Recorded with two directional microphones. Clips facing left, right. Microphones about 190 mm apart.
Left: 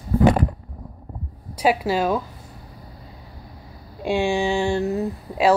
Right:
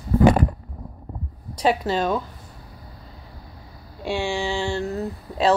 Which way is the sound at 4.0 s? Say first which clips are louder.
Left 4 dB; 15° left (ahead or behind).